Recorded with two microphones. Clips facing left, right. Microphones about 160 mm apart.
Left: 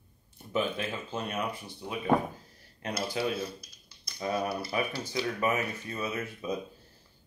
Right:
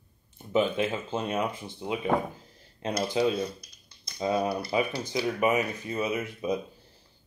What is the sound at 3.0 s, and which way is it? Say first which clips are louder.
Speech: right 6 dB; 20° right (ahead or behind).